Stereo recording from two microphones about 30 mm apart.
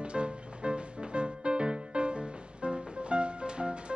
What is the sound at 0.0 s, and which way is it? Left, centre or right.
Music, right.